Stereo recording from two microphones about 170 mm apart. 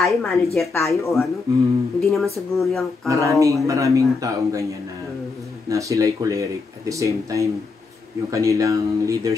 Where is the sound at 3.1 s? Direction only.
20° right (ahead or behind).